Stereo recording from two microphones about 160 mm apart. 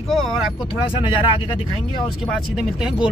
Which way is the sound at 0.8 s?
30° left (ahead or behind).